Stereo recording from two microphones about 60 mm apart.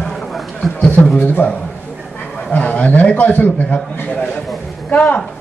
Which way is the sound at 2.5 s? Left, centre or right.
Left.